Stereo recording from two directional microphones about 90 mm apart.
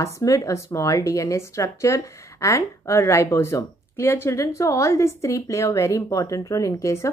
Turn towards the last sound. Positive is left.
turn(degrees=35)  # may be behind; listen again after turning